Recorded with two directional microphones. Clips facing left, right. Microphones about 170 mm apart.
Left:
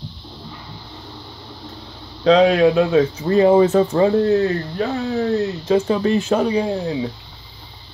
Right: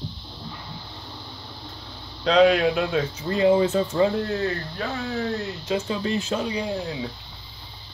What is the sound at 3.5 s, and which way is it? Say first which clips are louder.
Speech: left 7 dB; 60° left (ahead or behind).